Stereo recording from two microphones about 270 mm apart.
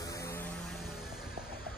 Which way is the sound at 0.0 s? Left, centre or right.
Centre.